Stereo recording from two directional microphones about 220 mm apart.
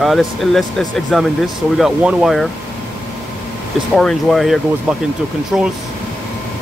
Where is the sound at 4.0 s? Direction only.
Centre (ahead or behind).